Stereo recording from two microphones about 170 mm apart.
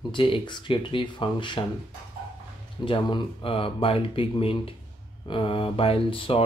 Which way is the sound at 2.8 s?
30° left (ahead or behind).